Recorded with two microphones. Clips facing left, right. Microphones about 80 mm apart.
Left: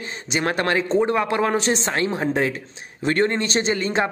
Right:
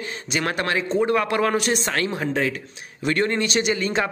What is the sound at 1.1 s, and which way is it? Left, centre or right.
A man's voice, left.